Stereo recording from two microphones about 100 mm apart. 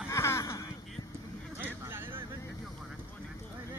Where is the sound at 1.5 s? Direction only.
20° right (ahead or behind).